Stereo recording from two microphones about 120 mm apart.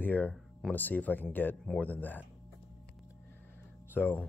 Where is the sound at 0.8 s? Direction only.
15° left (ahead or behind).